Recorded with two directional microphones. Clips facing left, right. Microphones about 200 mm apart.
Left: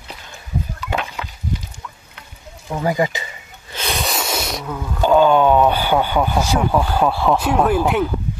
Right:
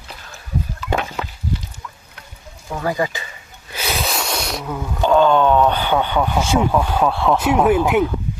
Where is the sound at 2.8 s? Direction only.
20° left (ahead or behind).